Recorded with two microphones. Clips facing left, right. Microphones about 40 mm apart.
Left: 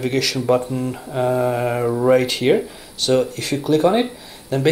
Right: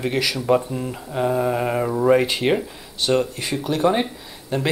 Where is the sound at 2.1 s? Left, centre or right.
Centre.